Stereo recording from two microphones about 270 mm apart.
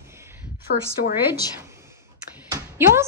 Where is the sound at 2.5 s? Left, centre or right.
Centre.